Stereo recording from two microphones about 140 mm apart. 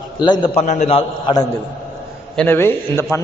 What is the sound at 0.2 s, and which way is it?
Speech, 30° left (ahead or behind).